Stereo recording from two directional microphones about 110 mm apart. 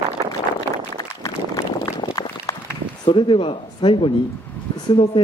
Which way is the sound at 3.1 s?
50° left (ahead or behind).